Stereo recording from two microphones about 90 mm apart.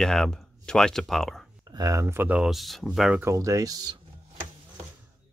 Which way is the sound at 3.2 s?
35° right (ahead or behind).